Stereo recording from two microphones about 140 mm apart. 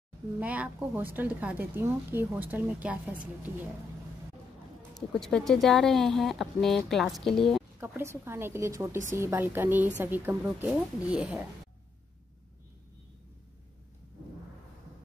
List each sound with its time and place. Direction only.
0.4 s a woman's voice: 10° right (ahead or behind)
4.9 s speech: 5° left (ahead or behind)
7.8 s a woman's voice: 20° right (ahead or behind)